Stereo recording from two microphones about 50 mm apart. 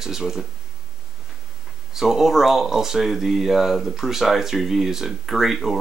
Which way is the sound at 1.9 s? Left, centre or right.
Centre.